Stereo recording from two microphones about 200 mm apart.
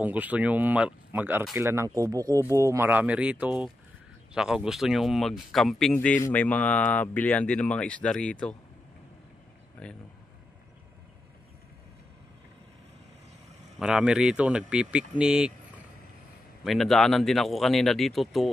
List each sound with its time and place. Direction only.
0.0 s speech: 10° right (ahead or behind)
9.8 s speech: 5° left (ahead or behind)
13.7 s speech: 5° right (ahead or behind)
16.6 s speech: centre (ahead or behind)